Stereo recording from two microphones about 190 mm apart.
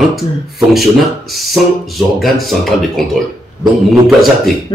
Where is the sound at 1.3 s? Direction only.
Centre (ahead or behind).